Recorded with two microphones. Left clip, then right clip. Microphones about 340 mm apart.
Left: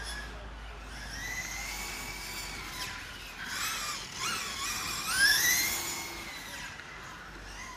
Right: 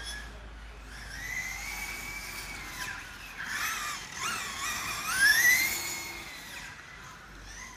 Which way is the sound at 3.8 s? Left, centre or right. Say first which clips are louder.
Right 1 dB; centre.